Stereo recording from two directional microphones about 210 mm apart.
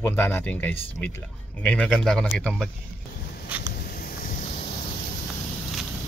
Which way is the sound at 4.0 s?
40° left (ahead or behind).